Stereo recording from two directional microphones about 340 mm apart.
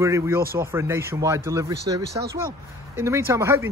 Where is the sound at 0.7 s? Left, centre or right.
Centre.